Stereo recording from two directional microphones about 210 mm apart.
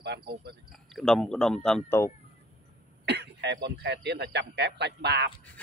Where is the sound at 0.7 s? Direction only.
Centre (ahead or behind).